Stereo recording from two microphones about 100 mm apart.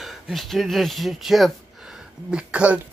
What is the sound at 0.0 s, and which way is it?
Speech, centre (ahead or behind).